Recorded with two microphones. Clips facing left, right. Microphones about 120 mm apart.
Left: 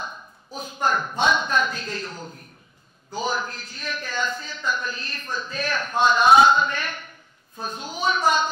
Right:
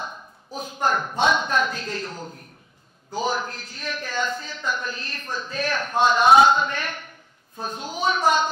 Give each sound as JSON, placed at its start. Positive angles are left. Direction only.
{"t": 0.6, "sound": "a man's voice", "side_deg": -55}
{"t": 6.4, "sound": "a sound", "side_deg": -55}
{"t": 7.6, "sound": "a man's voice", "side_deg": -55}